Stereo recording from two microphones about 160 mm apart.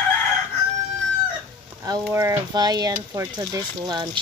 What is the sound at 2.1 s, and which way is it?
Speech, 15° right (ahead or behind).